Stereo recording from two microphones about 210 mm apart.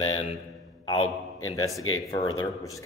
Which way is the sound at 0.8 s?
30° left (ahead or behind).